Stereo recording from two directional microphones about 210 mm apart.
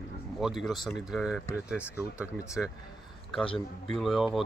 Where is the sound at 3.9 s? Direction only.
Centre (ahead or behind).